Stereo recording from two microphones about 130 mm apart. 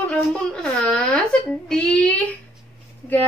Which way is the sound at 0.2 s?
5° left (ahead or behind).